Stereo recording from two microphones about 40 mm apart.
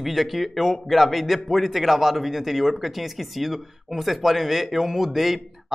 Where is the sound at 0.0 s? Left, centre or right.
Centre.